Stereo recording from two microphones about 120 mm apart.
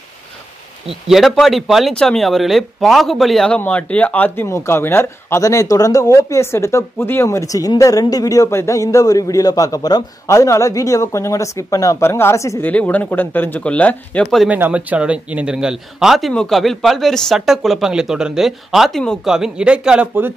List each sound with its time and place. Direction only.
1.0 s a man's voice: centre (ahead or behind); by 12.6 s 25° left (ahead or behind)
12.6 s speech: 15° left (ahead or behind)
14.5 s a man's voice: 15° right (ahead or behind)